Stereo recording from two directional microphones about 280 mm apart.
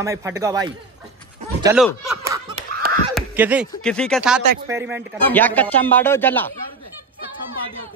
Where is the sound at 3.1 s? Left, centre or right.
Centre.